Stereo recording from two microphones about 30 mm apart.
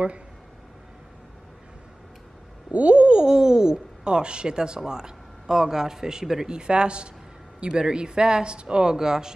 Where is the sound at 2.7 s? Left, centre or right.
Right.